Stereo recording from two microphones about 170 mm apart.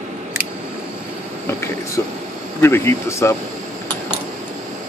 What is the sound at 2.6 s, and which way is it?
Speech, 15° left (ahead or behind).